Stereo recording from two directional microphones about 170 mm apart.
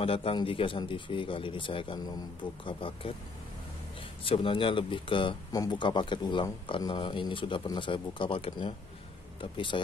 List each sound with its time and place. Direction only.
0.0 s speech: 35° left (ahead or behind)
4.2 s speech: 30° left (ahead or behind)